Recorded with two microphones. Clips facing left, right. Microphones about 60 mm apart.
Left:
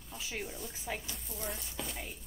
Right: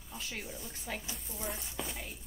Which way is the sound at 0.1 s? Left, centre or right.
Centre.